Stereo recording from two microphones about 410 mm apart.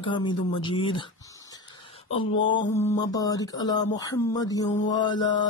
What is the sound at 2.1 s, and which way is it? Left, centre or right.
Speech, centre.